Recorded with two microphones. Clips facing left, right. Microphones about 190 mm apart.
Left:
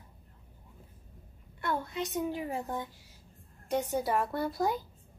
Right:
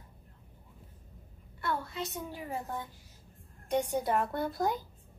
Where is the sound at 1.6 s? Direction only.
15° left (ahead or behind).